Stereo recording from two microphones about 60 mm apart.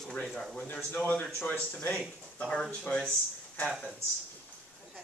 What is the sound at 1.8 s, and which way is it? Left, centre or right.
Speech, centre.